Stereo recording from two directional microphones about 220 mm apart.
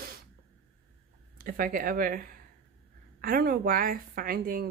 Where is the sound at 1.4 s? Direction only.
40° right (ahead or behind).